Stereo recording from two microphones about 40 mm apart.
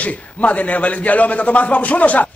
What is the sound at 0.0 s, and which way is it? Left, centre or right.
A man's voice, left.